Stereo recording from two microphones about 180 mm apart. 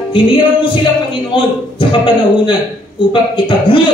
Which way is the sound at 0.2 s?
25° left (ahead or behind).